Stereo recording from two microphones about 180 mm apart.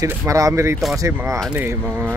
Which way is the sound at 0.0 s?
20° right (ahead or behind).